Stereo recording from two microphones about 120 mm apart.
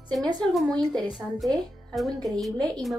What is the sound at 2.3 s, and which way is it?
Speech, centre (ahead or behind).